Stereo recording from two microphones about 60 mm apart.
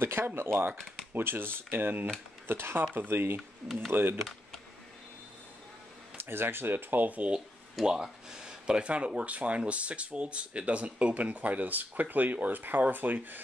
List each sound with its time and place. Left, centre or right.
0.0 s speech: right
3.3 s speech: centre
3.9 s speech: right
6.1 s speech: right
7.3 s speech: centre; by 13.4 s right